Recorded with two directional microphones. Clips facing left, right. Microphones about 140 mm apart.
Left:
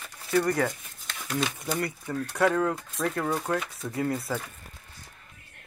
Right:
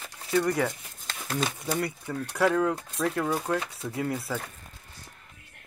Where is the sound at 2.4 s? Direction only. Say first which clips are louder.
Even; 5° right (ahead or behind).